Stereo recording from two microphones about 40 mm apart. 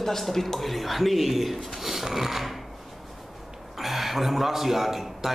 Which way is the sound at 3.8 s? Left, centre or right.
Centre.